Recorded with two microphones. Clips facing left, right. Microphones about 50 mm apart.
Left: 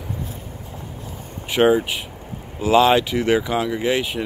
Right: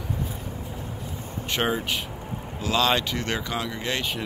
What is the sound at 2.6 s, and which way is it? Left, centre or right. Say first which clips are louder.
Speech: left 8 dB; centre.